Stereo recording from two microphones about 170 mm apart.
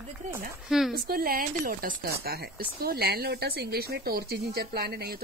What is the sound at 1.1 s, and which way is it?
A woman's voice, 60° right (ahead or behind).